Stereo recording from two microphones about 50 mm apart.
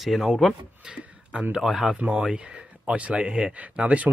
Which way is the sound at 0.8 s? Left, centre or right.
Centre.